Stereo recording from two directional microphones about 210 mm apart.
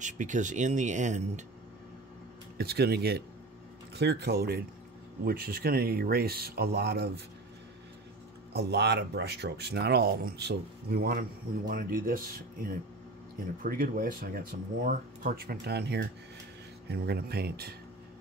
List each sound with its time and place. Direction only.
0.0 s speech: 35° right (ahead or behind)
2.5 s speech: 50° right (ahead or behind)
8.5 s speech: 50° right (ahead or behind)